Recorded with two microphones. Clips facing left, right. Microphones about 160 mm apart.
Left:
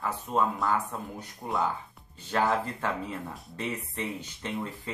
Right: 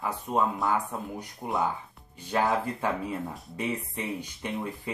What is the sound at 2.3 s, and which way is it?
Speech, 15° right (ahead or behind).